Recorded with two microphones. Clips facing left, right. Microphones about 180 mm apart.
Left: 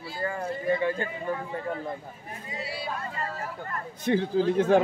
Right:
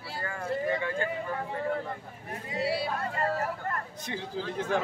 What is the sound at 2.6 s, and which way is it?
Speech, 65° right (ahead or behind).